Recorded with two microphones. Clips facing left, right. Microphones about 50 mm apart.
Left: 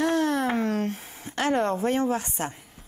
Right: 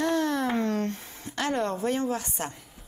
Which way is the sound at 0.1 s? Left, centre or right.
Left.